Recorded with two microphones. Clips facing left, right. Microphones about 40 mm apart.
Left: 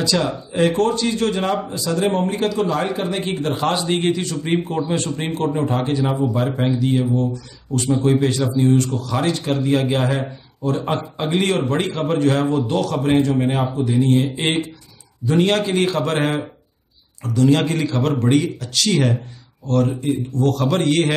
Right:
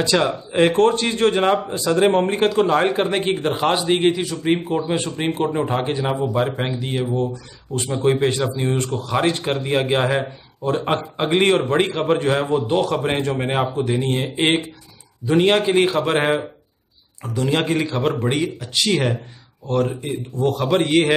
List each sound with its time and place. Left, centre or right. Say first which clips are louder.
0.0 s a man's voice: right 2 dB; right
3.5 s a man's voice: even; centre